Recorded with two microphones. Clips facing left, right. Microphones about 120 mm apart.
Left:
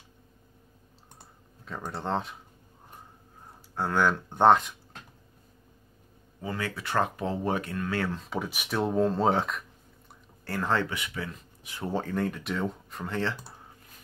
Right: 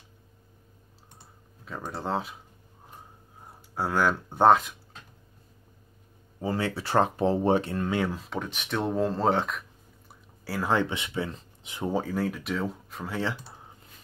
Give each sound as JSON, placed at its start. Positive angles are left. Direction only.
{"t": 1.6, "sound": "speech", "side_deg": 0}
{"t": 3.7, "sound": "speech", "side_deg": -5}
{"t": 6.4, "sound": "speech", "side_deg": -30}
{"t": 8.2, "sound": "speech", "side_deg": 5}
{"t": 10.7, "sound": "speech", "side_deg": -20}